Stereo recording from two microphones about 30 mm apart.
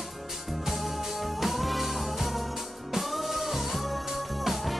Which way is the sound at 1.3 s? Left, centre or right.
Centre.